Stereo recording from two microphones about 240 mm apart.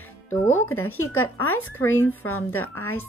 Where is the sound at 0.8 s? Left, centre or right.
Left.